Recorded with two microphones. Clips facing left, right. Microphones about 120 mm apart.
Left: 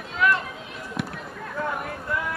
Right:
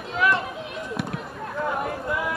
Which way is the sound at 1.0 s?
Centre (ahead or behind).